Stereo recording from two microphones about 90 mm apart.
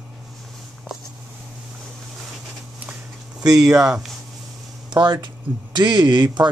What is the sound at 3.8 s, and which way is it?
Speech, 5° right (ahead or behind).